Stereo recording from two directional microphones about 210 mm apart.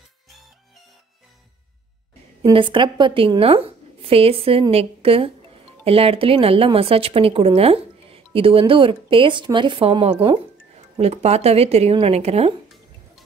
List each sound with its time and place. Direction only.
2.4 s a woman's voice: 25° right (ahead or behind)